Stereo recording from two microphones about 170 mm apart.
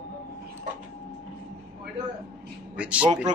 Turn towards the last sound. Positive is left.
turn(degrees=-5)  # may be behind; listen again after turning